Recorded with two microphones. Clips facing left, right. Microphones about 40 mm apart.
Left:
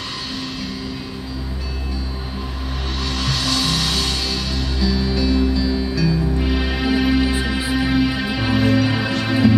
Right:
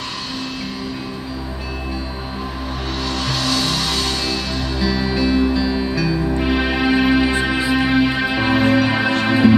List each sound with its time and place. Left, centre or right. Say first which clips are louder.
3.0 s music: right 1 dB; centre; by 9.6 s right